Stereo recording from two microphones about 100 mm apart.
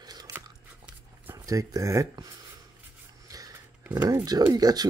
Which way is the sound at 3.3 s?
40° right (ahead or behind).